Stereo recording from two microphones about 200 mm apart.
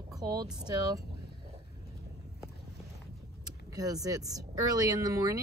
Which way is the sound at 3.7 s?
15° right (ahead or behind).